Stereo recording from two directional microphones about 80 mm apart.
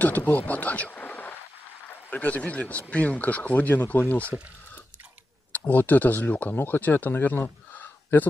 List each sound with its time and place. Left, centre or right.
0.0 s a man's voice: left
5.5 s speech: left